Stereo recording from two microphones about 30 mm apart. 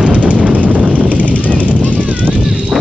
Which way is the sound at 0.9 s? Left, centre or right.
Right.